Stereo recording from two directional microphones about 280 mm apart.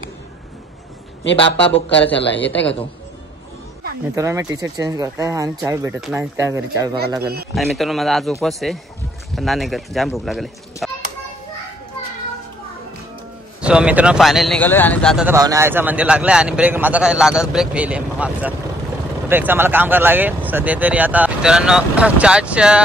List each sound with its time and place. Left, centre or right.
1.7 s speech: left
4.1 s speech: centre
7.5 s a man's voice: centre
13.6 s a man's voice: centre